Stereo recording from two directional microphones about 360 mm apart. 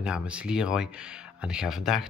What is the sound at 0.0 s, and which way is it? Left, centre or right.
Speech, centre.